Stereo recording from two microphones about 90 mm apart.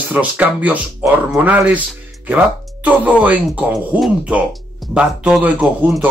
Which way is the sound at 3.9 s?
Centre (ahead or behind).